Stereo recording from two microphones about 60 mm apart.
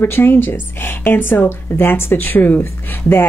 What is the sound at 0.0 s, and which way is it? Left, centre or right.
Speech, left.